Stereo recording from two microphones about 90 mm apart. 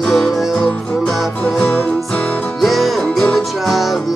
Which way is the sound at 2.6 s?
Centre (ahead or behind).